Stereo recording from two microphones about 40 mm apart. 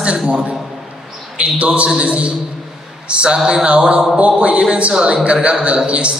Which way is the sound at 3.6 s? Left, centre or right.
Right.